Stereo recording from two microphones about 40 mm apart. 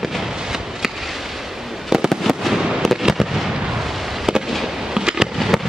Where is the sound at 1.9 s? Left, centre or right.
Centre.